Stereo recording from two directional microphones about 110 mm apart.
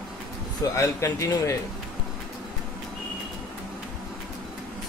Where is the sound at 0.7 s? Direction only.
30° left (ahead or behind).